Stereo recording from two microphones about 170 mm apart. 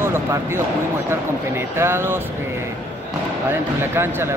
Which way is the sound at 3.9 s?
15° right (ahead or behind).